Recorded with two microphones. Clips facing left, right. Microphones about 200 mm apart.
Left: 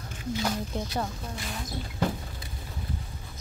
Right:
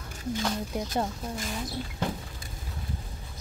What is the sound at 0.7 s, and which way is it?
Speech, 10° right (ahead or behind).